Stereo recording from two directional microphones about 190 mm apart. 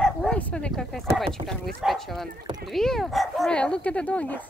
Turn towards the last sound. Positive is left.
turn(degrees=10)  # may be behind; listen again after turning